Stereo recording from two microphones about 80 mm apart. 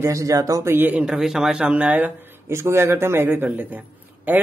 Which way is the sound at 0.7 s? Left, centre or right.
Right.